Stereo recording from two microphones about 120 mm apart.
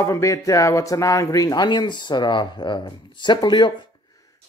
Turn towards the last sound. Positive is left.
turn(degrees=40)  # may be behind; listen again after turning